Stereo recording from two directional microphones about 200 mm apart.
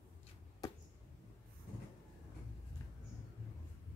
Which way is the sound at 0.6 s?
20° left (ahead or behind).